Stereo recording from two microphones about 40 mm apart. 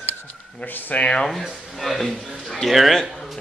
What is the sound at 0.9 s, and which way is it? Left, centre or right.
Speech, left.